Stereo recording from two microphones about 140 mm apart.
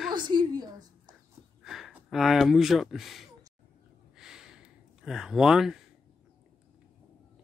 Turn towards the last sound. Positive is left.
turn(degrees=-5)  # may be behind; listen again after turning